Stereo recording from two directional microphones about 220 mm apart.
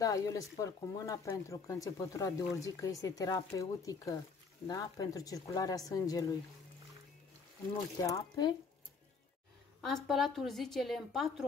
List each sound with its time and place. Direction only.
0.0 s speech: 15° left (ahead or behind)
8.0 s speech: 15° left (ahead or behind)
9.8 s a woman's voice: centre (ahead or behind)